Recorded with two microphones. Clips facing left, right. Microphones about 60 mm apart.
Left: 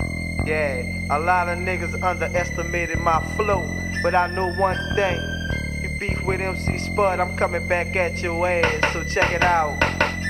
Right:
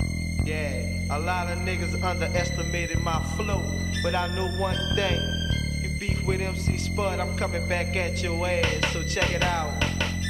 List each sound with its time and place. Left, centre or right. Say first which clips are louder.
1.1 s music: left 9 dB; left
6.2 s music: left 4 dB; left